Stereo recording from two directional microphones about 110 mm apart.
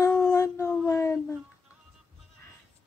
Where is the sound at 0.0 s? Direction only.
25° left (ahead or behind).